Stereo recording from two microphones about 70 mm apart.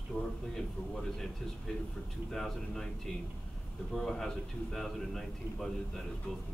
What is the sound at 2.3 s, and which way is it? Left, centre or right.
Speech, centre.